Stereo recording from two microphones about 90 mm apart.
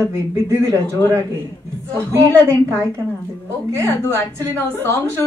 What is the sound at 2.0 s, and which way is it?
Speech, 35° right (ahead or behind).